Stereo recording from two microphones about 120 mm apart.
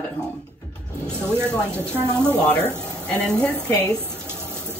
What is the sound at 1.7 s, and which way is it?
A woman's voice, 20° right (ahead or behind).